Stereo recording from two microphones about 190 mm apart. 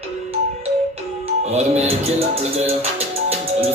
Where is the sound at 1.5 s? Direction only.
35° right (ahead or behind).